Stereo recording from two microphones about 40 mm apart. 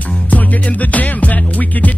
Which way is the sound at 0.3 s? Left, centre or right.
Left.